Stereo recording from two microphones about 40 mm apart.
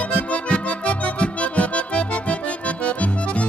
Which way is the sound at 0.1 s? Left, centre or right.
Left.